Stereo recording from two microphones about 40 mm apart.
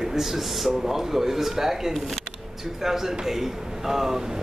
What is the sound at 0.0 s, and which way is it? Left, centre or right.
Speech, centre.